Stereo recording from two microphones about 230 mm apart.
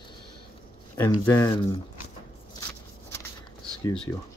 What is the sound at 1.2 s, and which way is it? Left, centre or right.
Speech, centre.